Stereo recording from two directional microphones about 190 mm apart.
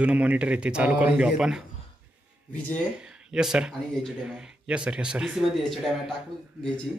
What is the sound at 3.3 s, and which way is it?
Speech, 5° right (ahead or behind).